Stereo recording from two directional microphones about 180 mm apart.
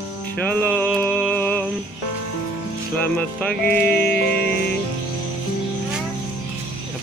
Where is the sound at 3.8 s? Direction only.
60° left (ahead or behind).